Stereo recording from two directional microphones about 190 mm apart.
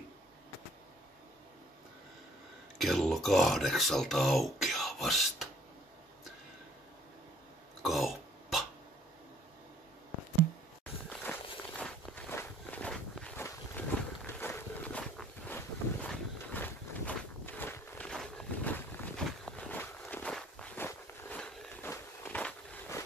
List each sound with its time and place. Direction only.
2.8 s speech: centre (ahead or behind)
7.8 s cough: centre (ahead or behind)
11.8 s walk: 10° left (ahead or behind)